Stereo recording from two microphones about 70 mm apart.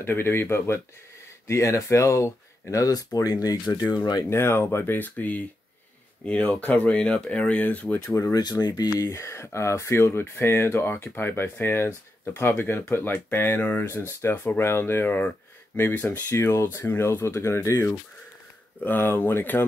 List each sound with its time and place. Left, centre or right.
0.0 s speech: left
4.3 s speech: left
8.1 s speech: left
8.4 s speech: left
9.1 s speech: left
16.3 s speech: left
18.9 s speech: left